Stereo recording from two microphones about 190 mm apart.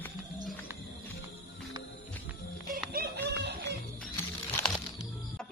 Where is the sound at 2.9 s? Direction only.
60° right (ahead or behind).